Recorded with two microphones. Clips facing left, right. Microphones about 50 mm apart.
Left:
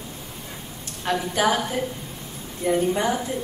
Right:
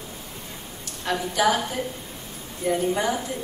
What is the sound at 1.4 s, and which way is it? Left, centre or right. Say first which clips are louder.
A woman's voice: right 1 dB; centre.